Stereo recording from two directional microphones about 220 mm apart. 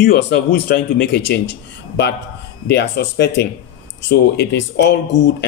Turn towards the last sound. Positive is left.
turn(degrees=50)  # may be behind; listen again after turning